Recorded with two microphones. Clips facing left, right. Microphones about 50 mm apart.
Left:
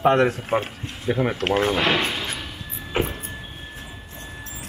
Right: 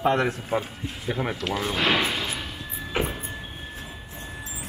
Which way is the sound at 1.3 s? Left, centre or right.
Left.